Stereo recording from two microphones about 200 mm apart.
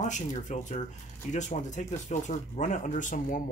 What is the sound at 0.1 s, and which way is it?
Speech, 35° left (ahead or behind).